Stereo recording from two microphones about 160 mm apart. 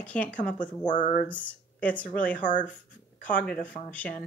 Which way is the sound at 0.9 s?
55° left (ahead or behind).